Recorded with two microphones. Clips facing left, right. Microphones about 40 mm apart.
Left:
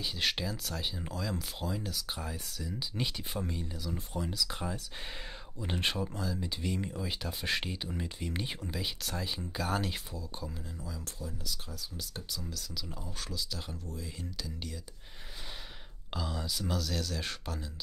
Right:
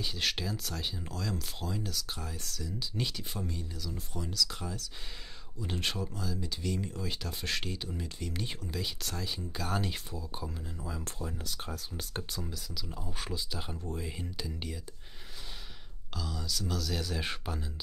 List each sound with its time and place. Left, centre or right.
0.0 s speech: centre
8.5 s speech: centre
10.1 s speech: centre
10.8 s speech: right
12.4 s speech: centre
12.7 s speech: centre
13.2 s speech: right
13.8 s speech: right
14.3 s speech: centre
16.1 s speech: left
16.9 s speech: centre